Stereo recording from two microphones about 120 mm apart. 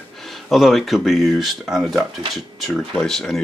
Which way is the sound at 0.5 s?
Centre (ahead or behind).